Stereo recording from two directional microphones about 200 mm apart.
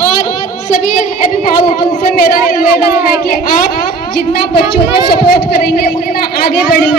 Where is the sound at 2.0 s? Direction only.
45° left (ahead or behind).